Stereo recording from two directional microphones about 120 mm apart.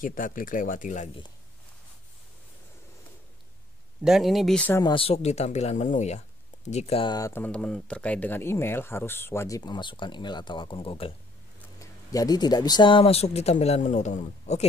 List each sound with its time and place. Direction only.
0.1 s speech: 90° left
4.0 s speech: 5° right (ahead or behind)
4.8 s speech: 50° left (ahead or behind); by 7.0 s 65° left (ahead or behind)
7.2 s speech: 25° left (ahead or behind)
7.4 s speech: 10° left (ahead or behind)
9.6 s speech: 40° left (ahead or behind)
11.8 s speech: 30° left (ahead or behind); by 14.7 s 80° left